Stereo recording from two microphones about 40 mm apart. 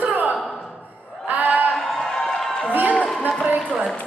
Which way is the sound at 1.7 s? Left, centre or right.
Centre.